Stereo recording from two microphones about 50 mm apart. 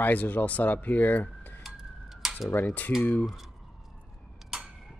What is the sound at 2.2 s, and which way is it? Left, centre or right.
Cutlery, centre.